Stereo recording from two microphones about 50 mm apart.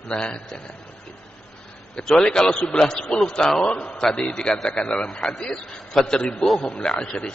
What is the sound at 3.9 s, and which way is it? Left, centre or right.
Speech, centre.